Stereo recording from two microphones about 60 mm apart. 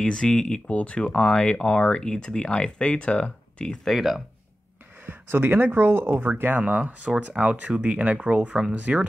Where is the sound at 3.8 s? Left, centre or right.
Centre.